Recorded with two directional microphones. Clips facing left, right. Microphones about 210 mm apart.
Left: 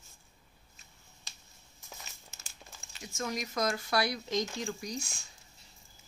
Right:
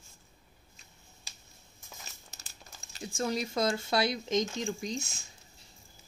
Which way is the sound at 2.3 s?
35° right (ahead or behind).